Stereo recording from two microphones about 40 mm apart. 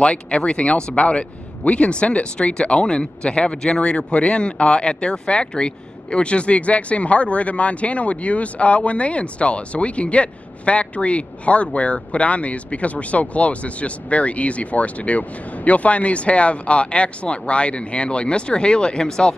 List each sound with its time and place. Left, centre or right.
0.0 s speech: left